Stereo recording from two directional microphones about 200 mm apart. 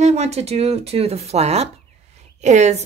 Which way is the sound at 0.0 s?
35° right (ahead or behind).